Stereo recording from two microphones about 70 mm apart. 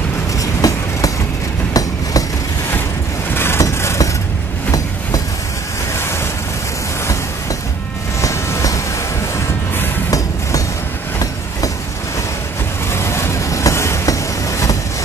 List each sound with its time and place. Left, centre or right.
0.4 s train: left
3.3 s vehicle: left
3.6 s vehicle: left
4.6 s train: left
8.2 s train: left
12.9 s vehicle: left